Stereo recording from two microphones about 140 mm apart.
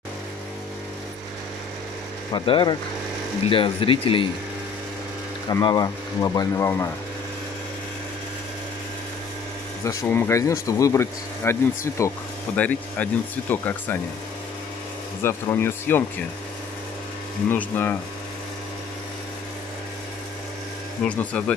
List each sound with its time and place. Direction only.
2.3 s speech: 35° left (ahead or behind)
5.5 s speech: 30° left (ahead or behind)
9.8 s speech: 15° left (ahead or behind)
12.5 s speech: 10° left (ahead or behind)
15.2 s speech: 15° left (ahead or behind)
17.5 s speech: 15° left (ahead or behind)
21.0 s speech: 10° left (ahead or behind)